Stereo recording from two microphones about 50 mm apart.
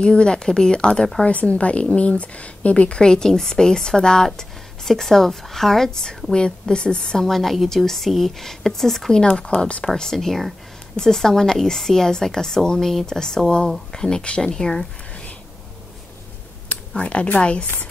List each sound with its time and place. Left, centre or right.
0.0 s speech: centre
1.2 s speech: left
3.0 s speech: centre
9.9 s speech: centre
16.6 s speech: left